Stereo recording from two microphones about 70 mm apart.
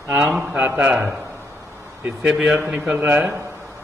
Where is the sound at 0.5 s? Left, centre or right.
Right.